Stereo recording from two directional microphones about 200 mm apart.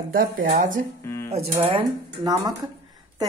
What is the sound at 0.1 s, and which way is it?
Speech, 45° right (ahead or behind).